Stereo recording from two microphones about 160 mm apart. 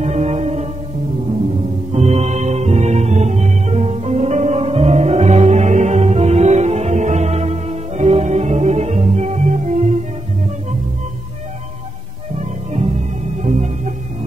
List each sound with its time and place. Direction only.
0.0 s music: 45° right (ahead or behind)
1.9 s music: 45° right (ahead or behind)
12.4 s music: 40° right (ahead or behind)